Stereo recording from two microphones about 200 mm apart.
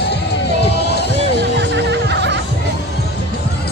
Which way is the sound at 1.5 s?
60° right (ahead or behind).